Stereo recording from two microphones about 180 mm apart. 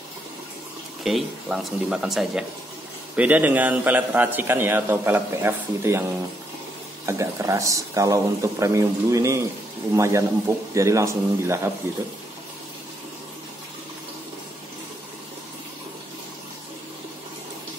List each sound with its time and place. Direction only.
1.0 s a man's voice: centre (ahead or behind)
7.1 s a man's voice: 15° right (ahead or behind)